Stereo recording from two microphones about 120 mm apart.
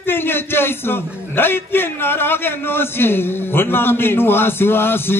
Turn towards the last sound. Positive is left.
turn(degrees=20)  # may be behind; listen again after turning